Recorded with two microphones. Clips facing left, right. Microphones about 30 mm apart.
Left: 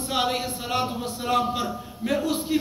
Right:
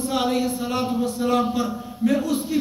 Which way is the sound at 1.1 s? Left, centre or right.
Left.